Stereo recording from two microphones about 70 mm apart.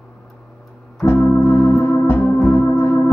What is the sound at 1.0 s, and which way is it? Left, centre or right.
Organ, left.